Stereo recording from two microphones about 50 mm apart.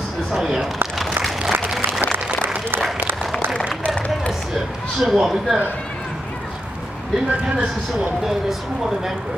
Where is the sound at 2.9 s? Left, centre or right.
Right.